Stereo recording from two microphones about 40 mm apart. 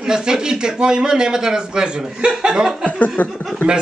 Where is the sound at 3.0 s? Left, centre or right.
Left.